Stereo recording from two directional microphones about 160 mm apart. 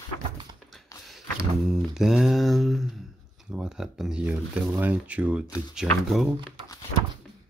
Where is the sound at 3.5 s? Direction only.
5° right (ahead or behind).